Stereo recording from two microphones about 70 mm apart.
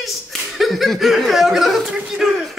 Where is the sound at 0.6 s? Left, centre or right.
Centre.